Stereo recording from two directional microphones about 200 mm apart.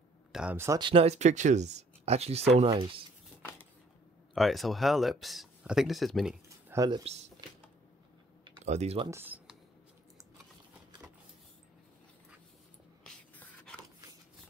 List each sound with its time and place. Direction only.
0.3 s speech: 5° right (ahead or behind); by 3.0 s 30° right (ahead or behind)
4.3 s speech: centre (ahead or behind)
6.7 s speech: 15° right (ahead or behind)
8.6 s speech: 35° right (ahead or behind)
9.1 s a sound: 10° right (ahead or behind)
13.0 s a sound: 5° left (ahead or behind)